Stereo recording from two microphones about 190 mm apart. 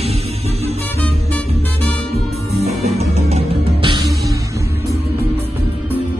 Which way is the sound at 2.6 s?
35° right (ahead or behind).